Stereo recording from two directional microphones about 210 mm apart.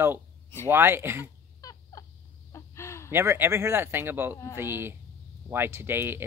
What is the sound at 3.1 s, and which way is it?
Speech, 10° right (ahead or behind).